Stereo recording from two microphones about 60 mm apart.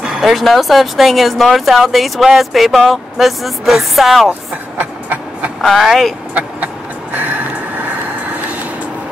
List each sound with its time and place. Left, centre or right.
0.2 s speech: centre
4.3 s train: right
5.6 s speech: centre
6.3 s a sound: right